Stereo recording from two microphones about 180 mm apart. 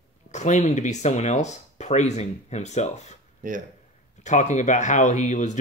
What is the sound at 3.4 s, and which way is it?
Speech, 50° right (ahead or behind).